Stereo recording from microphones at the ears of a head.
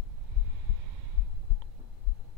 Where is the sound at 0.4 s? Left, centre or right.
Right.